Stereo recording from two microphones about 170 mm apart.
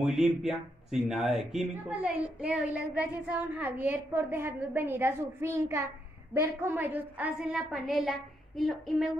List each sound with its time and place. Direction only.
0.0 s a woman's voice: 5° right (ahead or behind)